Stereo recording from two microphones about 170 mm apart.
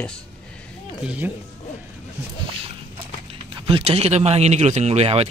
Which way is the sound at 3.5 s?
30° right (ahead or behind).